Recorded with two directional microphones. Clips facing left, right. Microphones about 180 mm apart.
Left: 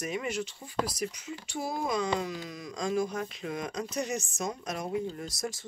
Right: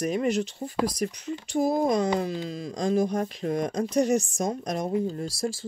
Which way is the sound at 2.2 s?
30° right (ahead or behind).